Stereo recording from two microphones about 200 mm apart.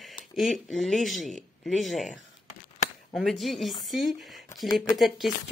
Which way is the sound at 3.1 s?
Centre (ahead or behind).